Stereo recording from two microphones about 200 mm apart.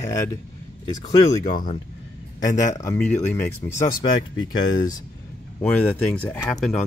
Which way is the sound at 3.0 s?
10° left (ahead or behind).